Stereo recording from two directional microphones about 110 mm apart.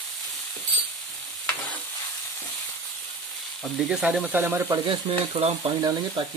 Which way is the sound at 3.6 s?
5° right (ahead or behind).